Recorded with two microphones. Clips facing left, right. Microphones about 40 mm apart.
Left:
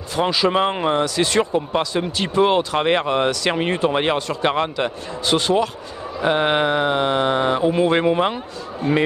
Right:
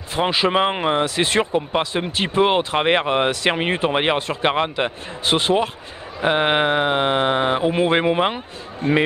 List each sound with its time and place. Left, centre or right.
0.1 s speech: right
1.0 s speech: right